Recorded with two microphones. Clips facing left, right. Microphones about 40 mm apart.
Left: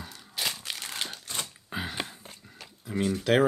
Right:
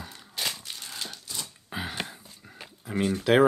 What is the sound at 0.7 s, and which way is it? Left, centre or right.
Crumpling, left.